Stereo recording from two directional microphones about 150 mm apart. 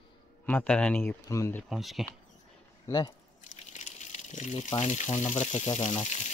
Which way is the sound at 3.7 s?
55° left (ahead or behind).